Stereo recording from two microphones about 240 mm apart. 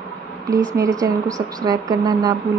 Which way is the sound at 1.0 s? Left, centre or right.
Centre.